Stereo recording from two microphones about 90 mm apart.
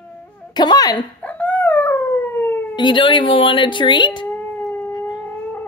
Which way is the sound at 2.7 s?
60° left (ahead or behind).